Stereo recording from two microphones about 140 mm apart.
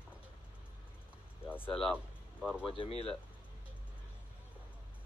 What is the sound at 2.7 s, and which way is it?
Speech, 40° left (ahead or behind).